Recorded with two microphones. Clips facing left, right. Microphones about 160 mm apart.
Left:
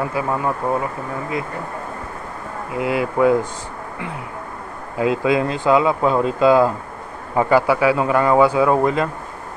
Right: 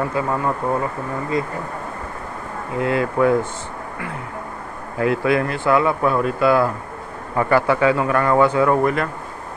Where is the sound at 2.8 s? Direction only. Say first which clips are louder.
Left 1 dB; 15° left (ahead or behind).